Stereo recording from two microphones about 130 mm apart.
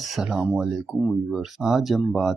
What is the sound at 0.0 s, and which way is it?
Speech, 5° right (ahead or behind).